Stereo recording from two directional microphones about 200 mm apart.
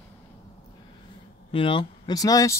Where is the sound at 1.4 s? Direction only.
25° left (ahead or behind).